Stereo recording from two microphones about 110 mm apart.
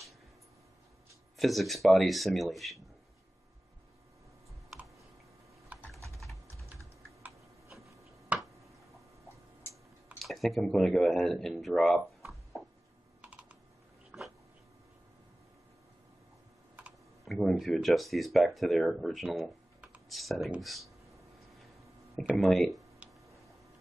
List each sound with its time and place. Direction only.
1.4 s speech: centre (ahead or behind)
8.3 s finger snapping: 10° right (ahead or behind)
10.1 s speech: centre (ahead or behind)
13.2 s computer keyboard: 10° right (ahead or behind)
14.1 s dog: 10° right (ahead or behind)
17.2 s speech: centre (ahead or behind)
20.6 s a sound: centre (ahead or behind)
22.3 s speech: centre (ahead or behind)